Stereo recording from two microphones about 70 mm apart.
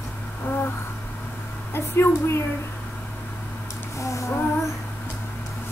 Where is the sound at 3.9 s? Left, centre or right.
Left.